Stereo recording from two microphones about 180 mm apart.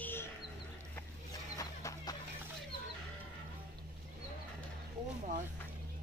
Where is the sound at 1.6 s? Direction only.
20° left (ahead or behind).